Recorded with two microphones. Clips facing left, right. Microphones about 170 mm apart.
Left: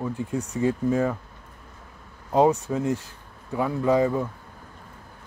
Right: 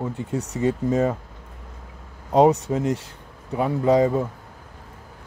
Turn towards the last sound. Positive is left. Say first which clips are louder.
# right 3 dB
turn(degrees=-20)  # may be behind; listen again after turning